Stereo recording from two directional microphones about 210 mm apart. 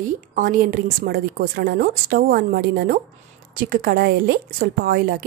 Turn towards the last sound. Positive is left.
turn(degrees=-50)  # may be behind; listen again after turning